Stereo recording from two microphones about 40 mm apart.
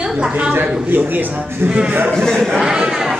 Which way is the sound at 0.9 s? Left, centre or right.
Right.